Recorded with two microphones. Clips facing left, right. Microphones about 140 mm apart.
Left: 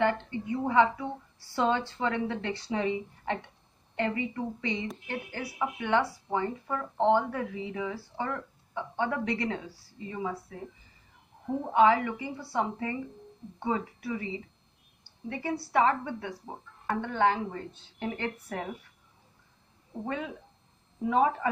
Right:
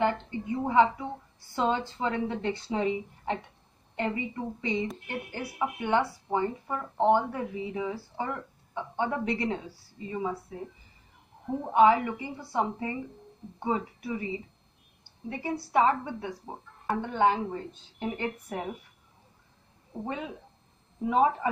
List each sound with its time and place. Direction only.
0.5 s a woman's voice: 25° right (ahead or behind)
11.7 s a woman's voice: 20° right (ahead or behind)
16.4 s a woman's voice: 10° right (ahead or behind)
20.1 s a woman's voice: 20° right (ahead or behind)